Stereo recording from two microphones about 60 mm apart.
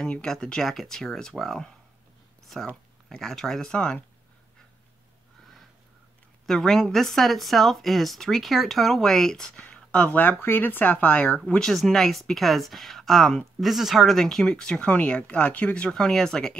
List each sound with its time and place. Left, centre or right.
0.0 s speech: centre
2.7 s speech: centre
3.7 s speech: centre
6.4 s speech: centre
11.7 s speech: centre